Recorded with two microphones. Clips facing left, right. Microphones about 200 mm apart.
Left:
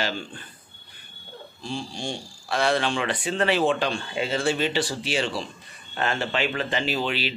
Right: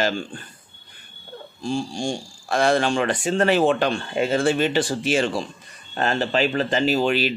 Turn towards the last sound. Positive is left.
turn(degrees=-45)  # may be behind; listen again after turning